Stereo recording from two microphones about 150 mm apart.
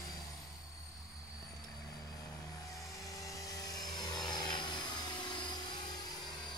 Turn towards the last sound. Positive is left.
turn(degrees=30)  # may be behind; listen again after turning